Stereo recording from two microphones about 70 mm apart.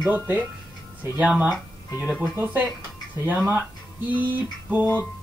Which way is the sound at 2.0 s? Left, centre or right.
Centre.